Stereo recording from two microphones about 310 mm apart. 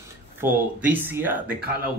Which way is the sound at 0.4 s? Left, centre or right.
Centre.